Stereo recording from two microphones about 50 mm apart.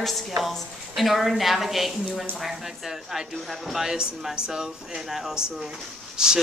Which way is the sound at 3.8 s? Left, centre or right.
Centre.